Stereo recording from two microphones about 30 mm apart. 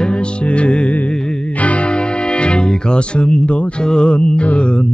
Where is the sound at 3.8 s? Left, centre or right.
Left.